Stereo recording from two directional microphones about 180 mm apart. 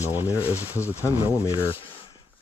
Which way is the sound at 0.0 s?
10° right (ahead or behind).